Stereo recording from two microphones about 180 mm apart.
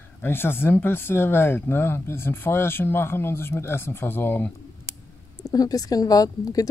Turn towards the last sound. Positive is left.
turn(degrees=20)  # may be behind; listen again after turning